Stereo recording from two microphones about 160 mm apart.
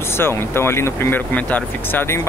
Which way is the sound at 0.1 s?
15° left (ahead or behind).